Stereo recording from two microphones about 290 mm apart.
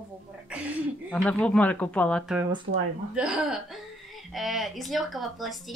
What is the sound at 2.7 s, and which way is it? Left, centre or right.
Speech, right.